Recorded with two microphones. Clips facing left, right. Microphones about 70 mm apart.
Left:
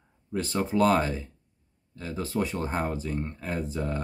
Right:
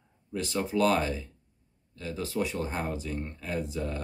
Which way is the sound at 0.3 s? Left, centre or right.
Left.